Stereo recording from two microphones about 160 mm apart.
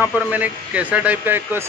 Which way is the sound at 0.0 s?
10° right (ahead or behind).